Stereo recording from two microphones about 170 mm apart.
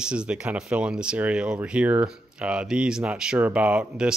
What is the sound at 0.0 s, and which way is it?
Speech, 5° right (ahead or behind).